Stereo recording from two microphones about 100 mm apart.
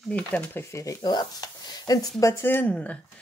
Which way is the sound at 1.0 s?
45° left (ahead or behind).